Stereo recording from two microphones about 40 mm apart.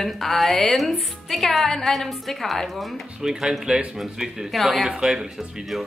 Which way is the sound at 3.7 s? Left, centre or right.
Right.